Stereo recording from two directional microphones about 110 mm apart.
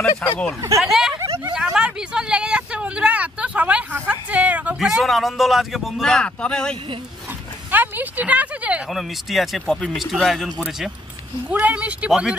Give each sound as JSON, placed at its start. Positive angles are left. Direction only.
{"t": 0.2, "sound": "speech", "side_deg": 10}
{"t": 0.6, "sound": "speech", "side_deg": -30}
{"t": 0.8, "sound": "speech", "side_deg": -5}
{"t": 1.1, "sound": "speech", "side_deg": -30}
{"t": 1.5, "sound": "vehicle", "side_deg": -10}
{"t": 4.8, "sound": "speech", "side_deg": 0}
{"t": 7.2, "sound": "speech", "side_deg": -20}
{"t": 8.9, "sound": "speech", "side_deg": 0}
{"t": 11.4, "sound": "speech", "side_deg": -10}